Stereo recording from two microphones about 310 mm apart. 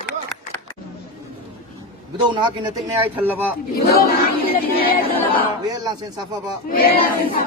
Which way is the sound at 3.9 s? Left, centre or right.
Left.